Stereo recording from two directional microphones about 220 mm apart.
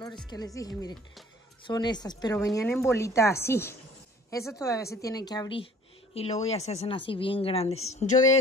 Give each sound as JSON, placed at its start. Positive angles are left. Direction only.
{"t": 0.6, "sound": "a woman's voice", "side_deg": 15}